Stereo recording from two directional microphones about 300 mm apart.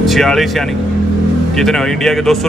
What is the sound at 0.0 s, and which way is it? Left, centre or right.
Speech, centre.